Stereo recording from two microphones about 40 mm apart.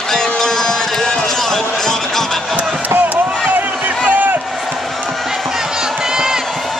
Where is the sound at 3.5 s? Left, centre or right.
Right.